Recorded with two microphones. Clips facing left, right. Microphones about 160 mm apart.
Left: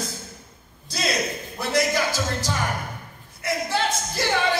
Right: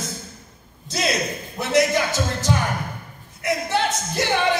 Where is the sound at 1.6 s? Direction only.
20° right (ahead or behind).